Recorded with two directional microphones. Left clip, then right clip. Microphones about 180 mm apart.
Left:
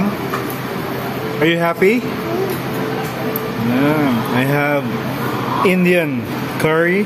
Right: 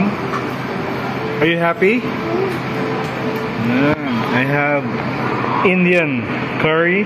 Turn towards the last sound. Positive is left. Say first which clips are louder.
# even
turn(degrees=20)  # may be behind; listen again after turning